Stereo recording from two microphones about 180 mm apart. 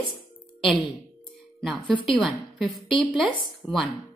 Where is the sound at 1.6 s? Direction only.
Centre (ahead or behind).